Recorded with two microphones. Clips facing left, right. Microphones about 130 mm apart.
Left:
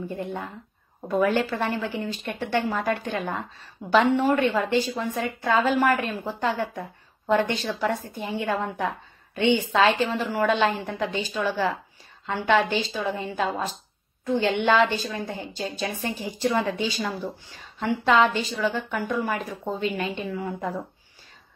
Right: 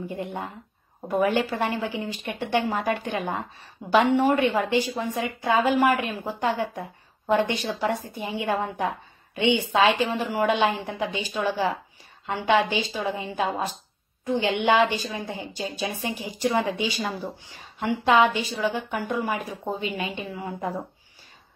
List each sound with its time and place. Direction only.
0.1 s a woman's voice: 15° right (ahead or behind)